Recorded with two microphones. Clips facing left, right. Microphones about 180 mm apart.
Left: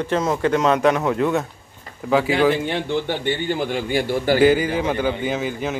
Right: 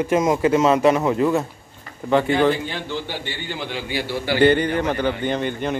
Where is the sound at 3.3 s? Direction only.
50° left (ahead or behind).